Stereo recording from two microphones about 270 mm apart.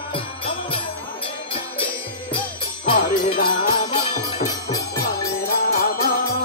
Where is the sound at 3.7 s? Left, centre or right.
Centre.